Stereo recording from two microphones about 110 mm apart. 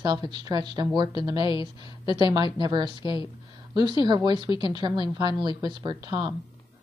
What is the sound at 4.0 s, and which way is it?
Speech, 40° right (ahead or behind).